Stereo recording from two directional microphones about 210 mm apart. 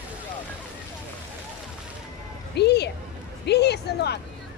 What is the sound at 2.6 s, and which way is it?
Speech, 50° left (ahead or behind).